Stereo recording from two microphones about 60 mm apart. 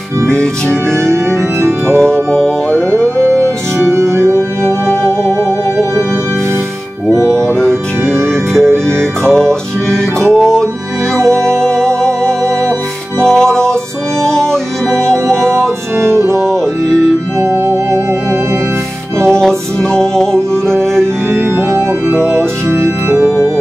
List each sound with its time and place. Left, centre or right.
0.3 s music: centre
0.9 s organ: right
2.0 s music: centre
2.7 s music: right
7.3 s music: centre
8.0 s music: right
8.3 s music: centre
16.0 s music: right
16.3 s music: centre
17.4 s organ: right
19.2 s music: centre
21.3 s organ: right